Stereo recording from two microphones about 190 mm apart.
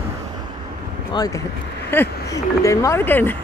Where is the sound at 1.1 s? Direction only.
20° left (ahead or behind).